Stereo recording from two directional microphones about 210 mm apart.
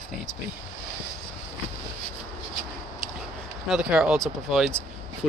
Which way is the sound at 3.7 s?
5° right (ahead or behind).